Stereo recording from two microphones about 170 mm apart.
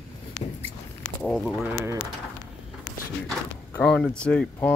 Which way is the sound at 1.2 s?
5° left (ahead or behind).